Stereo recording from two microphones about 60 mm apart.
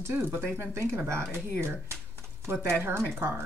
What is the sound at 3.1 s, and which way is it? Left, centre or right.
Speech, right.